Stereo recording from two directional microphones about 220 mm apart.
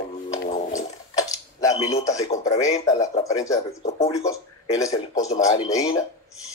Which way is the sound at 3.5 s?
30° left (ahead or behind).